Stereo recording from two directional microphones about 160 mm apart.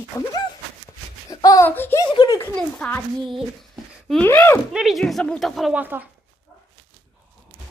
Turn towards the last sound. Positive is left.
turn(degrees=-10)  # may be behind; listen again after turning